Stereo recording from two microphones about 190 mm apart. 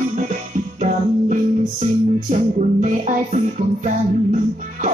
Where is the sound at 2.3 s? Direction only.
40° right (ahead or behind).